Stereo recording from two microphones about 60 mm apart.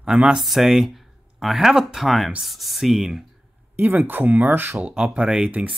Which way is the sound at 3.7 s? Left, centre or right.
Right.